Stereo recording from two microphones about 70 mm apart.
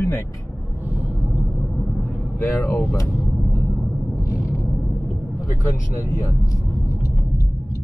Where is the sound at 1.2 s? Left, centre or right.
Centre.